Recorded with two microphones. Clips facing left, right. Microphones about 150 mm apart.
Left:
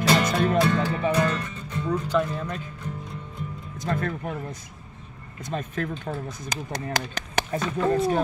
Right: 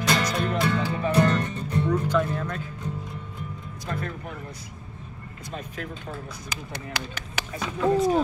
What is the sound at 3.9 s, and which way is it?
Music, 45° left (ahead or behind).